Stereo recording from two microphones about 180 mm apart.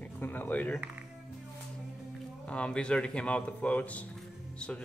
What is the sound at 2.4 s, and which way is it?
A man's voice, 5° left (ahead or behind).